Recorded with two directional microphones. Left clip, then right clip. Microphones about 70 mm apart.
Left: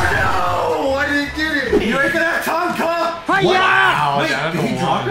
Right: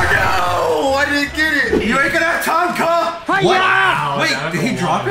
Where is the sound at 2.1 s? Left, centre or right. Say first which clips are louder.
Right 2 dB; right.